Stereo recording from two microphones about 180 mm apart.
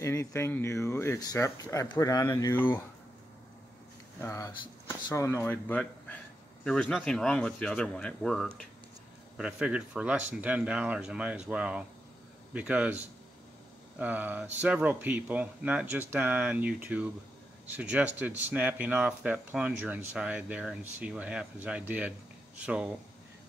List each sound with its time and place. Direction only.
0.0 s speech: 15° left (ahead or behind)
4.2 s speech: 15° left (ahead or behind); by 22.1 s 10° right (ahead or behind)